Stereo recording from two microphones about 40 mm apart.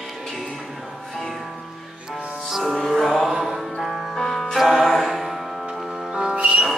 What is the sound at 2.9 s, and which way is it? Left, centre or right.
Music, centre.